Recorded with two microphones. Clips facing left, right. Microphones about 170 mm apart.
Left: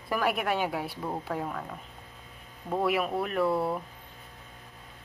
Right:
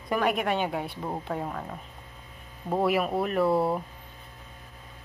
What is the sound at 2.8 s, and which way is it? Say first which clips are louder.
Speech: right 3 dB; centre (ahead or behind).